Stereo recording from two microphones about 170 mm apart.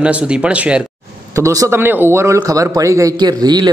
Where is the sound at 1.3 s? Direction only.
20° right (ahead or behind).